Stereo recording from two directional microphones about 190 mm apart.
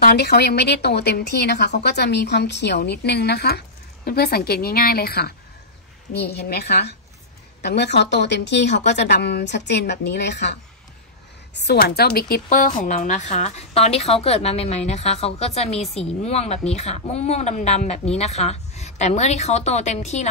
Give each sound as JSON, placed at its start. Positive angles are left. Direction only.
{"t": 0.0, "sound": "a woman's voice", "side_deg": 60}